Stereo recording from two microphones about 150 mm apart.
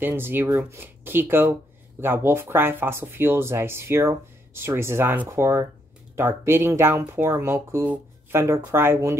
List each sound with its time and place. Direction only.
0.0 s speech: 15° right (ahead or behind)